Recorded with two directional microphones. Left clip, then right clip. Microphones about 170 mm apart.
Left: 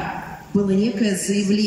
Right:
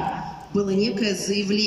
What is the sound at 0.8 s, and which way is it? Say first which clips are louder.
Speech: left 2 dB; 15° left (ahead or behind).